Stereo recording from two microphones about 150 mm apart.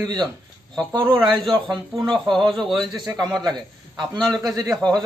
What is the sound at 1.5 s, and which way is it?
Speech, 25° right (ahead or behind).